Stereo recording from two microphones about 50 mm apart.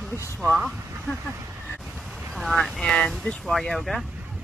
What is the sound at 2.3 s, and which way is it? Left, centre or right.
Vehicle, centre.